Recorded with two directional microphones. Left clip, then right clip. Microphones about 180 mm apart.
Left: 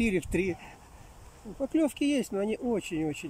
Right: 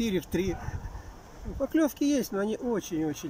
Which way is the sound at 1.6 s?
10° left (ahead or behind).